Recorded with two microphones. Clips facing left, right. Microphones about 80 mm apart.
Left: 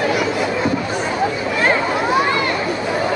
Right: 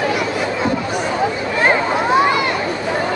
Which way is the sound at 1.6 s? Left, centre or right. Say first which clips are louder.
Right 2 dB; right.